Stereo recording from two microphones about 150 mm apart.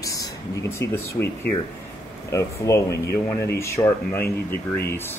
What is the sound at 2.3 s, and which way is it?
Speech, 20° left (ahead or behind).